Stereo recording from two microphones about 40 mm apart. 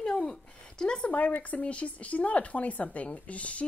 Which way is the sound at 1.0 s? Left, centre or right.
Left.